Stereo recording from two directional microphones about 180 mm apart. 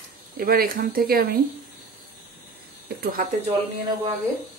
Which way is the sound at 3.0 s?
55° right (ahead or behind).